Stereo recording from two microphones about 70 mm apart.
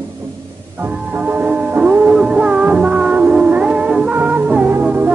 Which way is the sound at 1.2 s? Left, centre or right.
Right.